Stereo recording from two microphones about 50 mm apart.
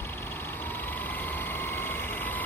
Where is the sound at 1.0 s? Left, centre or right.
Left.